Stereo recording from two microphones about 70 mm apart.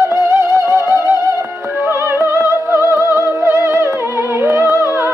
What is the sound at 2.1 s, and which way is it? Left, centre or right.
Music, right.